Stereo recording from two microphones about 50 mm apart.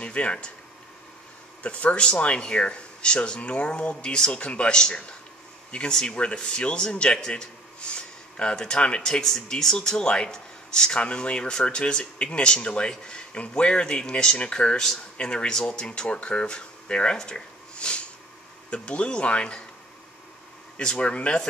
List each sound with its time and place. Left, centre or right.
0.0 s speech: left
1.6 s speech: left
9.2 s speech: centre
20.7 s speech: centre